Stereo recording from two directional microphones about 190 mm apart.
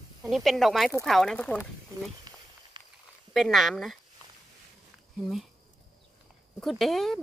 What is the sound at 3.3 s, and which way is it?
Speech, centre (ahead or behind).